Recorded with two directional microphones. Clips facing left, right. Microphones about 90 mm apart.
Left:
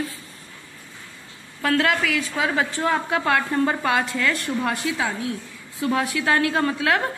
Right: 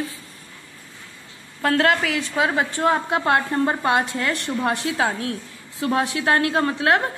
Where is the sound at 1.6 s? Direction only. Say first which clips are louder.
Right 2 dB; 40° right (ahead or behind).